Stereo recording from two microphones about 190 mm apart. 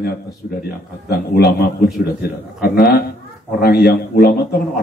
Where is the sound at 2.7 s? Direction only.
55° left (ahead or behind).